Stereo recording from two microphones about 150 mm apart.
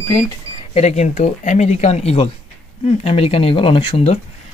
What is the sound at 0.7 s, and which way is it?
Speech, 50° left (ahead or behind).